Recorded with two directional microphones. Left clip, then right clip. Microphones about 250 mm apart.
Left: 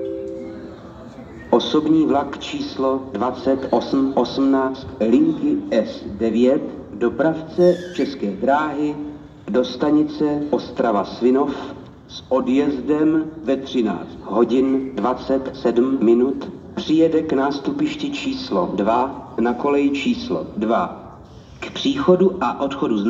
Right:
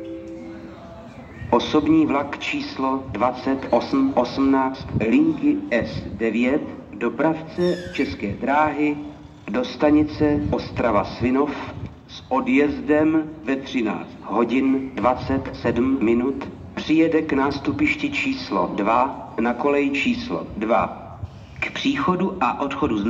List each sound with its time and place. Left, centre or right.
1.5 s a man's voice: right